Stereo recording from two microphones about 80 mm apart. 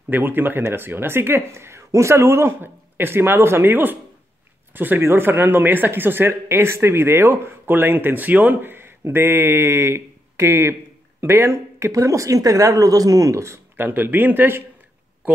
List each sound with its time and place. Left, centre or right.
0.1 s speech: right
11.9 s speech: right
13.7 s speech: right